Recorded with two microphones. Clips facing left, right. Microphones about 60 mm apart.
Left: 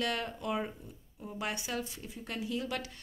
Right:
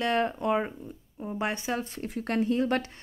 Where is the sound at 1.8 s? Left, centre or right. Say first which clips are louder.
Right 10 dB; right.